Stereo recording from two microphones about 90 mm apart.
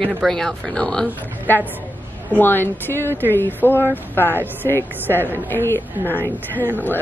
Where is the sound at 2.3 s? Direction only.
25° left (ahead or behind).